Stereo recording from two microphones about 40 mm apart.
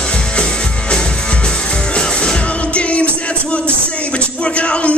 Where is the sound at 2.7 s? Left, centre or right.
Left.